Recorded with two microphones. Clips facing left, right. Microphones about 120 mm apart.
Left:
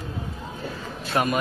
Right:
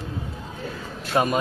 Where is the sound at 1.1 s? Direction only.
20° right (ahead or behind).